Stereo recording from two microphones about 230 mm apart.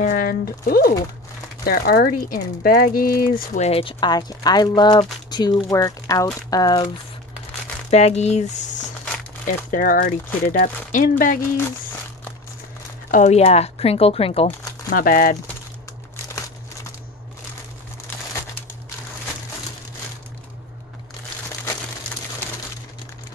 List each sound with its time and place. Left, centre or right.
0.0 s speech: left; by 6.9 s centre
7.9 s speech: left
9.5 s speech: left
13.1 s speech: left
14.9 s speech: left